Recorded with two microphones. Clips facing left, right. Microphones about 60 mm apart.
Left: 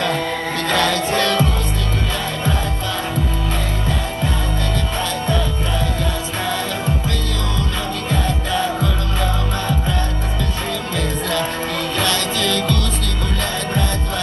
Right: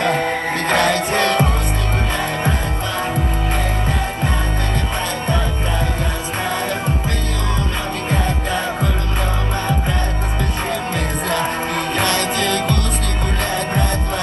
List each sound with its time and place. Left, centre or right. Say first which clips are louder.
0.7 s music: right 1 dB; right
8.1 s music: even; right
12.0 s music: right 1 dB; right